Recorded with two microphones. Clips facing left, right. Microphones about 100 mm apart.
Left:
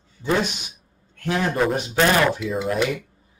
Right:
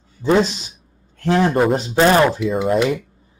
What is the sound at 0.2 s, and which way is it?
A man's voice, 30° right (ahead or behind).